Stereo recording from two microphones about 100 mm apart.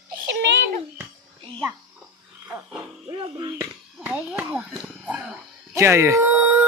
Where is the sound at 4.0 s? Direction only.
15° right (ahead or behind).